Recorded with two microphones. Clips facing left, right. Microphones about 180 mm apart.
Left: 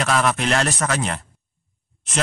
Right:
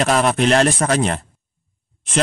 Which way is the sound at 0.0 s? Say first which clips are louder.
Right 4 dB; 30° right (ahead or behind).